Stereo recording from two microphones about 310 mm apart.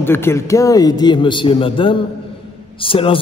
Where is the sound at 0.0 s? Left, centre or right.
Centre.